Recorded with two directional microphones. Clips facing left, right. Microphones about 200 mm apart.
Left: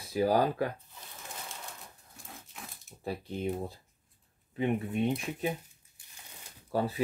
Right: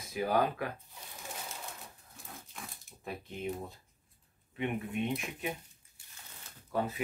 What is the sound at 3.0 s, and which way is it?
Speech, 35° left (ahead or behind).